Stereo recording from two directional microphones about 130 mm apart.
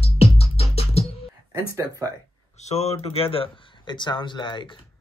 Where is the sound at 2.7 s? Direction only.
55° left (ahead or behind); by 4.6 s 35° left (ahead or behind).